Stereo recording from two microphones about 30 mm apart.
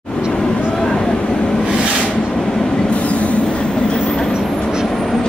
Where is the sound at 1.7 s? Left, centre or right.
Right.